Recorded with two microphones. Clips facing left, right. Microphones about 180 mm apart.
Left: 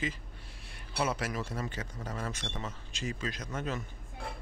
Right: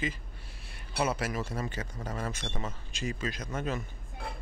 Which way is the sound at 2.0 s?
30° right (ahead or behind).